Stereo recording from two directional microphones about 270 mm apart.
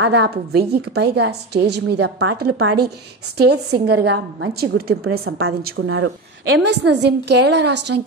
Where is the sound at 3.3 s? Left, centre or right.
Right.